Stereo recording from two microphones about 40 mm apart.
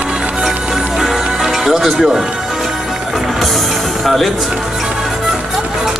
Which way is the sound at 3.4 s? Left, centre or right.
Centre.